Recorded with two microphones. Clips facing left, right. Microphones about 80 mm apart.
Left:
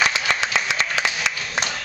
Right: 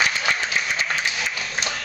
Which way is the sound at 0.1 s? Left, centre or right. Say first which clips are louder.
Left 1 dB; left.